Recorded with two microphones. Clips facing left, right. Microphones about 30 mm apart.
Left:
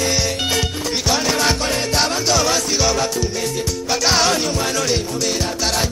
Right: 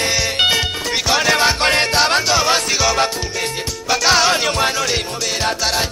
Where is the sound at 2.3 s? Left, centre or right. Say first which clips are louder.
Right 2 dB; right.